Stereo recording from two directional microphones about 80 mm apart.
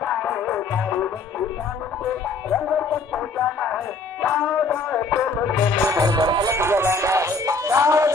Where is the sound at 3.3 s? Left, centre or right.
Centre.